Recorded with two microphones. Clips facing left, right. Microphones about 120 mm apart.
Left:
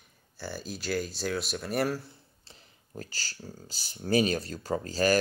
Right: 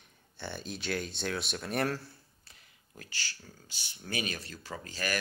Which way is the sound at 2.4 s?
35° left (ahead or behind).